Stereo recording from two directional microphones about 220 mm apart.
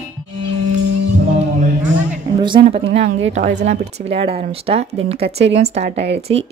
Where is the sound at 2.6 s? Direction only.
25° right (ahead or behind).